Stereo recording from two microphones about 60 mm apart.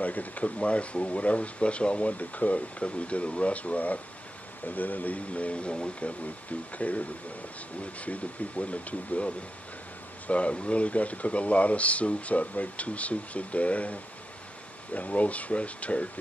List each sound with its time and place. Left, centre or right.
0.0 s speech: left
15.0 s speech: left